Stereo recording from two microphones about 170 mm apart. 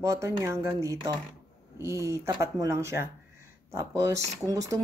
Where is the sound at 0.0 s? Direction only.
15° right (ahead or behind).